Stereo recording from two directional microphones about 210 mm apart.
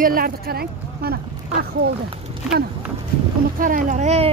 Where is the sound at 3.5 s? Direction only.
40° right (ahead or behind).